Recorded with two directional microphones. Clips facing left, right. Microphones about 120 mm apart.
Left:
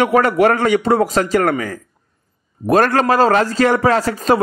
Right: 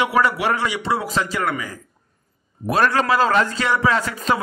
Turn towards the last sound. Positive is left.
turn(degrees=40)  # may be behind; listen again after turning